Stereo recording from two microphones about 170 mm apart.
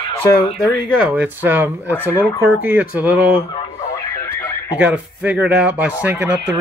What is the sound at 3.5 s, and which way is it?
Radio, 30° left (ahead or behind).